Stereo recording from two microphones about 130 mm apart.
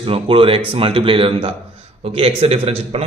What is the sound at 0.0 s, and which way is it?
A man's voice, 45° right (ahead or behind).